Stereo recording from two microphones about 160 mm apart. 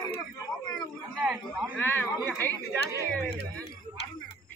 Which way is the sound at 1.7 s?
10° left (ahead or behind).